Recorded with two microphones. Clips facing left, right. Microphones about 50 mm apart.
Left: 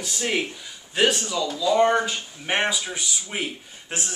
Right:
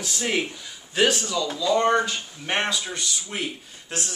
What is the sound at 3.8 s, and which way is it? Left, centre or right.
Speech, left.